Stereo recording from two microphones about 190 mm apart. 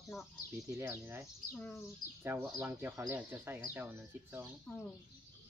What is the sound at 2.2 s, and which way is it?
Speech, 10° right (ahead or behind).